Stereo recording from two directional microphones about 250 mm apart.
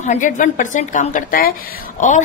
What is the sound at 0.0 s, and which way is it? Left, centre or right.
A woman's voice, left.